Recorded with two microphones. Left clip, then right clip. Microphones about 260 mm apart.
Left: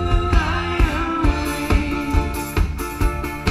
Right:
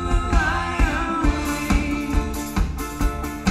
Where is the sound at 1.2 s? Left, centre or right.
Centre.